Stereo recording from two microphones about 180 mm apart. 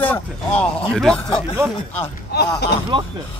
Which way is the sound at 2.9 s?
25° right (ahead or behind).